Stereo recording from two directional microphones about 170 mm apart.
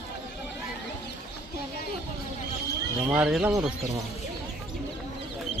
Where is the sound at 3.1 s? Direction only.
5° right (ahead or behind).